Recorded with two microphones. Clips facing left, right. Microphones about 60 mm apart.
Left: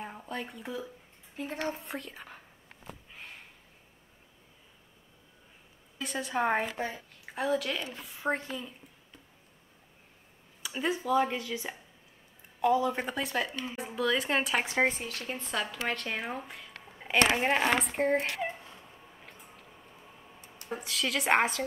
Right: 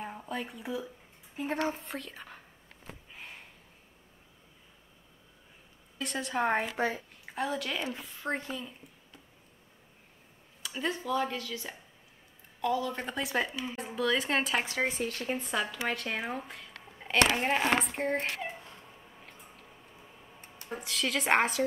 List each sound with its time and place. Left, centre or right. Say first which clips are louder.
0.0 s a sound: right 1 dB; centre
1.6 s a woman's voice: right 2 dB; centre
3.1 s a sound: even; centre
5.9 s a woman's voice: even; centre
10.6 s speech: left 2 dB; centre
11.2 s speech: left 2 dB; left
13.0 s a woman's voice: even; centre
14.6 s speech: left 4 dB; centre
15.4 s a woman's voice: left 3 dB; centre
18.3 s a sound: left 3 dB; centre
20.7 s a woman's voice: even; centre